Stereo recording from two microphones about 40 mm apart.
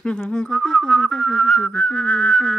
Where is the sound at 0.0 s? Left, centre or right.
Left; by 1.5 s centre.